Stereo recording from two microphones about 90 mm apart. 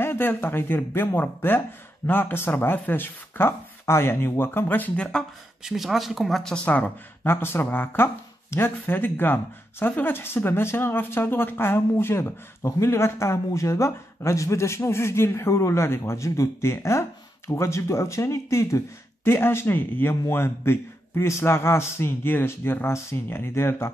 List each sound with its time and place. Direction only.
0.0 s speech: 25° left (ahead or behind)
5.6 s speech: 5° right (ahead or behind); by 6.9 s 15° left (ahead or behind)
7.2 s speech: 25° left (ahead or behind)